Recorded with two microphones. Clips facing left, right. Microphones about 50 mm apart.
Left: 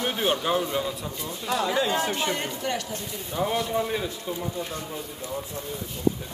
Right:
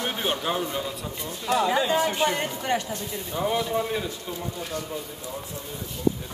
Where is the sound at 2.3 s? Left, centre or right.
Right.